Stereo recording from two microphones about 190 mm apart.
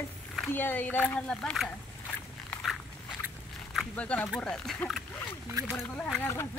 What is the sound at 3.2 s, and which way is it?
Speech, centre (ahead or behind).